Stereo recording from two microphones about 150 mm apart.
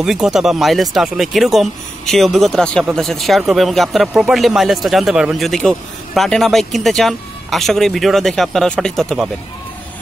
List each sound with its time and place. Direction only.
0.0 s speech: centre (ahead or behind)